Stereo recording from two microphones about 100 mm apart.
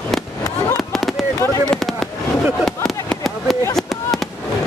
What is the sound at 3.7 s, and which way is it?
Fireworks, centre (ahead or behind).